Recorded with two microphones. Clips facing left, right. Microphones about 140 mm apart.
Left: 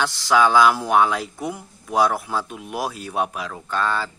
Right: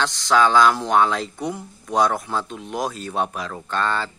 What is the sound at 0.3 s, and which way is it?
Speech, 5° left (ahead or behind).